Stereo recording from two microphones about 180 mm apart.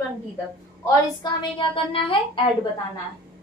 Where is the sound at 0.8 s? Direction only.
25° left (ahead or behind).